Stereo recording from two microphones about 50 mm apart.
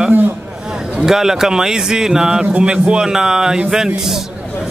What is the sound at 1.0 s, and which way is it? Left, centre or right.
A man's voice, centre.